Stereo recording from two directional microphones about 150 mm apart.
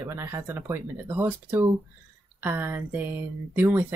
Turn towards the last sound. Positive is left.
turn(degrees=-10)  # may be behind; listen again after turning